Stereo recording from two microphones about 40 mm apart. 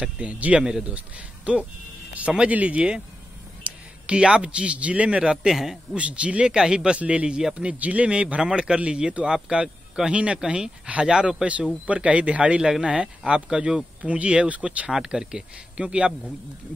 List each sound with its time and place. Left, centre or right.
0.0 s a man's voice: right
0.6 s speech: centre
0.8 s a man's voice: right
3.6 s a sound: right
4.4 s a man's voice: right
5.3 s speech: centre
5.9 s a man's voice: right
7.0 s a man's voice: right
8.4 s a man's voice: right
11.8 s a man's voice: right
12.7 s speech: centre
14.0 s a man's voice: right
15.0 s a man's voice: right